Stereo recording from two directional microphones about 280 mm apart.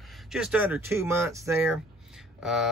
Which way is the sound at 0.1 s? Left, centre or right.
Centre.